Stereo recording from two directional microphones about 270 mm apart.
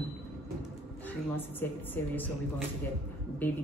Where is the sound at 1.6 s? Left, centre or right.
Centre.